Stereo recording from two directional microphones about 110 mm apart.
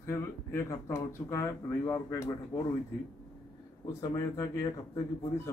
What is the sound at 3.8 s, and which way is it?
Speech, 30° left (ahead or behind).